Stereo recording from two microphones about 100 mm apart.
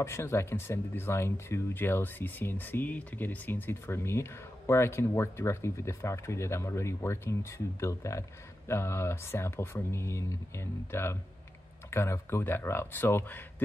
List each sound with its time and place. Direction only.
0.0 s speech: 30° left (ahead or behind)